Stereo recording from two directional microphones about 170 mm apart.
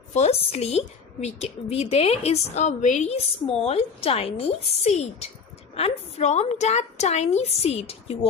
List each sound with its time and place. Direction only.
0.1 s a woman's voice: 40° left (ahead or behind)